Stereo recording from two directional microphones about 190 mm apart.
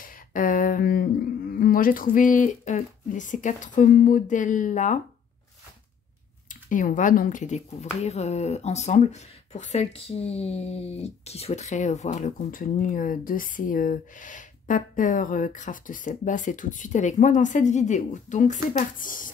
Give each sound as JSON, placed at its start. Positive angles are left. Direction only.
{"t": 0.0, "sound": "speech", "side_deg": 45}
{"t": 6.5, "sound": "speech", "side_deg": 45}